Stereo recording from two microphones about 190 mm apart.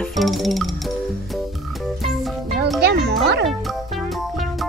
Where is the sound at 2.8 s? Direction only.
60° right (ahead or behind).